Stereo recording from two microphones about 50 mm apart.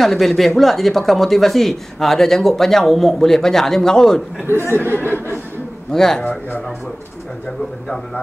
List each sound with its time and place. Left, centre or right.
0.0 s speech: centre
4.5 s speech: right
5.9 s speech: centre